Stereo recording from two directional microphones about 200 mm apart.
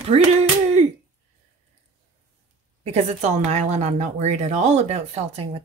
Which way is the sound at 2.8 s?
35° right (ahead or behind).